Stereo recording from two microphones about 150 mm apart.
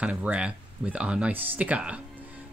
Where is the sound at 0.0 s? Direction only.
10° right (ahead or behind).